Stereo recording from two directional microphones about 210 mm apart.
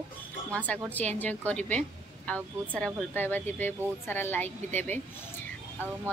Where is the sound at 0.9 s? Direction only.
5° left (ahead or behind).